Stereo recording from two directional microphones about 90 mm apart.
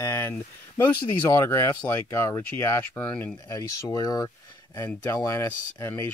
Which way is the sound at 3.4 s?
40° left (ahead or behind).